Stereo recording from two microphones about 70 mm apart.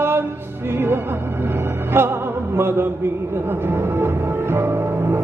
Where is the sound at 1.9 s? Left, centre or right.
Right.